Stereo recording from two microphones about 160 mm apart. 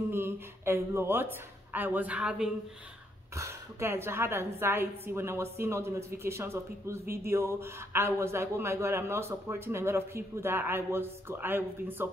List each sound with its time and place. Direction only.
0.1 s a woman's voice: 15° right (ahead or behind)
3.3 s a woman's voice: 15° right (ahead or behind)